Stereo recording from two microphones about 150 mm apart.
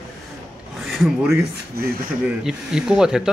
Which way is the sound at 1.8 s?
90° right.